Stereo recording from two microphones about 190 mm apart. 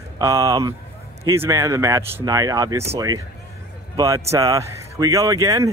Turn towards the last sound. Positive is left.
turn(degrees=-15)  # may be behind; listen again after turning